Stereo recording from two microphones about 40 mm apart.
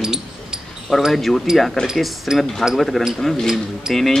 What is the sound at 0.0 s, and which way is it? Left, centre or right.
Basketball bounce, centre.